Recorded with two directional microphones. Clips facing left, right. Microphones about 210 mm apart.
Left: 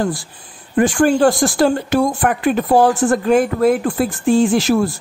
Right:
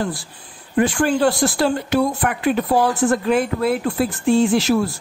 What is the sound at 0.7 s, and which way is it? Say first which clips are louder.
Speech: left 4 dB; 45° left (ahead or behind).